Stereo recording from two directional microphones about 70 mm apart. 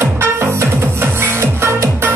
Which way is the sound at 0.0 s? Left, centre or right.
Right.